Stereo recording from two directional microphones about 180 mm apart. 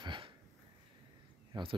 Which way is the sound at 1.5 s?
30° right (ahead or behind).